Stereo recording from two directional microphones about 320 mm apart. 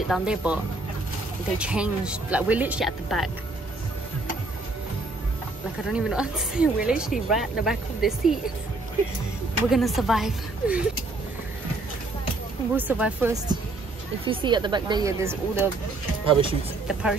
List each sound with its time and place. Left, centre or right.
0.1 s speech: centre
1.6 s speech: centre
5.9 s speech: centre
9.7 s speech: centre
12.7 s speech: centre